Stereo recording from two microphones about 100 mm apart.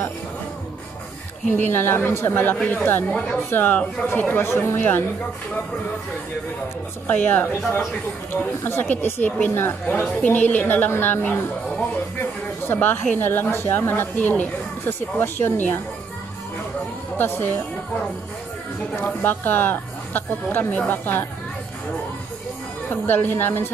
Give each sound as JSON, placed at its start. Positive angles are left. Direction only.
{"t": 1.6, "sound": "a woman's voice", "side_deg": 25}
{"t": 7.1, "sound": "a woman's voice", "side_deg": 20}
{"t": 12.6, "sound": "a woman's voice", "side_deg": 20}
{"t": 18.9, "sound": "a woman's voice", "side_deg": 20}
{"t": 22.8, "sound": "a woman's voice", "side_deg": 20}